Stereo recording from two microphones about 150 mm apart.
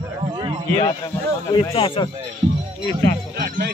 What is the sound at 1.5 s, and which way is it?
Speech, 35° left (ahead or behind).